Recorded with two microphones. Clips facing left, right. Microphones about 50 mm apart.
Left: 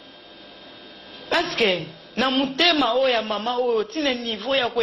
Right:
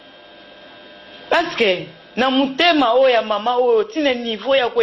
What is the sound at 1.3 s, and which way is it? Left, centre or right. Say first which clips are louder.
A woman's voice: right 5 dB; right.